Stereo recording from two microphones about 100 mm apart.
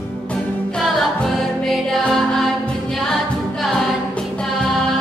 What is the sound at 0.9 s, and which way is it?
Music, 5° left (ahead or behind).